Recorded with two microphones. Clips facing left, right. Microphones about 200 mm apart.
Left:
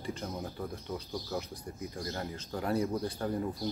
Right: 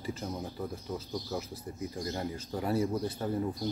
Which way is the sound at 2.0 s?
15° right (ahead or behind).